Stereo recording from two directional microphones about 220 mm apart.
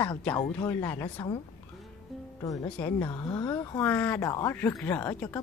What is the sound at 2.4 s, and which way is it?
Speech, 15° left (ahead or behind).